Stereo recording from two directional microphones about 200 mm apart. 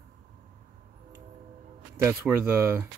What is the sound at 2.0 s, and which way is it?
Speech, 10° right (ahead or behind).